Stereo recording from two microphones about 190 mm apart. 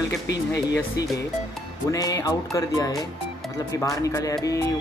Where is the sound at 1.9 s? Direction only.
20° left (ahead or behind).